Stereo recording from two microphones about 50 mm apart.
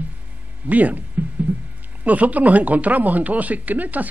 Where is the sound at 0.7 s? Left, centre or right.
Right.